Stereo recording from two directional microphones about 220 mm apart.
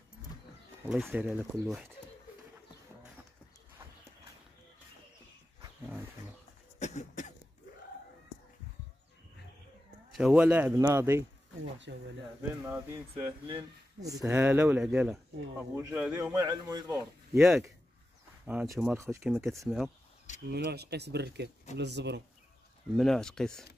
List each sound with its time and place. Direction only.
0.8 s speech: centre (ahead or behind)
5.6 s wild animals: 10° right (ahead or behind)
6.8 s cough: 30° left (ahead or behind)
10.1 s a man's voice: 5° right (ahead or behind)
11.9 s speech: 55° right (ahead or behind)
12.6 s a man's voice: 10° right (ahead or behind)
13.1 s speech: 20° right (ahead or behind)
14.2 s a man's voice: 10° right (ahead or behind)
17.5 s a man's voice: centre (ahead or behind)
20.4 s speech: 45° right (ahead or behind)
22.9 s speech: centre (ahead or behind)